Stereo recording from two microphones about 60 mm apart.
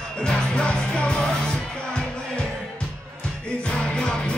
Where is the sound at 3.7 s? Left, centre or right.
Centre.